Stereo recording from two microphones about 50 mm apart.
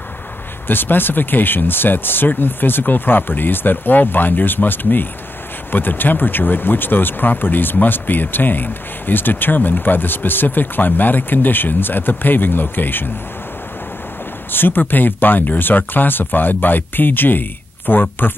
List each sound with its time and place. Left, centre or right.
0.7 s speech: left
14.5 s speech: left